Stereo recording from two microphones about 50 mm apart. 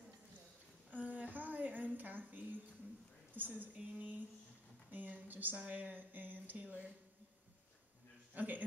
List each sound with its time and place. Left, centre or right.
1.0 s a sound: right
3.3 s speech: right
8.4 s speech: right